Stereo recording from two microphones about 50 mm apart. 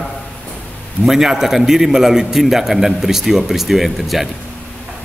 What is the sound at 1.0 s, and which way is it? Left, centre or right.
A man's voice, centre.